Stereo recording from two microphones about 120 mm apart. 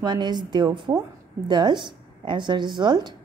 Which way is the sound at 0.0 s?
35° right (ahead or behind).